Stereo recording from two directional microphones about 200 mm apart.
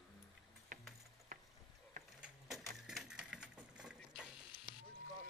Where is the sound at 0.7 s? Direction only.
40° right (ahead or behind).